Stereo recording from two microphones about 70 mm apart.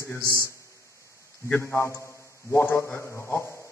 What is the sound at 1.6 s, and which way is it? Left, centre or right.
A man's voice, left.